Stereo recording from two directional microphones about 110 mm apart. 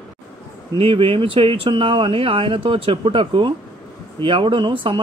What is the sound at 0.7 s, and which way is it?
A man's voice, 55° right (ahead or behind).